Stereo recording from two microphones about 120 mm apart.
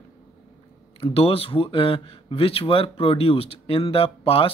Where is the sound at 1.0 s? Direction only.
55° left (ahead or behind).